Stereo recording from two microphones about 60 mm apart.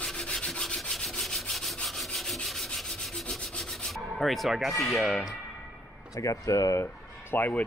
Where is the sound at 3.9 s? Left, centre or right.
Centre.